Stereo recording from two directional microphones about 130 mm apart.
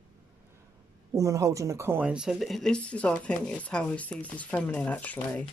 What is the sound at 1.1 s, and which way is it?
Speech, 25° right (ahead or behind).